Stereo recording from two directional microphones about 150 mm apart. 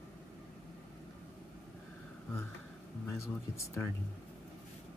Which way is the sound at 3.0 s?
20° left (ahead or behind).